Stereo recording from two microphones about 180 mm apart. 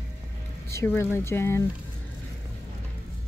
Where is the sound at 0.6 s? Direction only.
15° left (ahead or behind).